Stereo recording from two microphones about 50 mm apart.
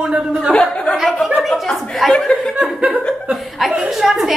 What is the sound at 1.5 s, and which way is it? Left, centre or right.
Chuckle, centre.